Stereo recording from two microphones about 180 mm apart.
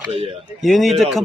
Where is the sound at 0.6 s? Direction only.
Centre (ahead or behind).